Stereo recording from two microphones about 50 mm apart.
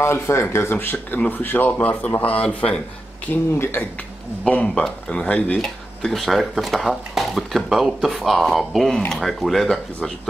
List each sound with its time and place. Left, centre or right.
0.0 s a man's voice: left
3.5 s speech: left
4.6 s speech: centre
5.1 s a man's voice: left
5.6 s speech: centre